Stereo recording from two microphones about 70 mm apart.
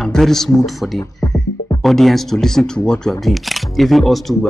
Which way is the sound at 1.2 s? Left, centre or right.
Left.